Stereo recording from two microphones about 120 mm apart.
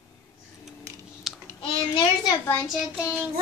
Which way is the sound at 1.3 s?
Centre (ahead or behind).